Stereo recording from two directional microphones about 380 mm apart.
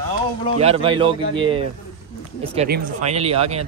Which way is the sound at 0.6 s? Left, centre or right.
Centre.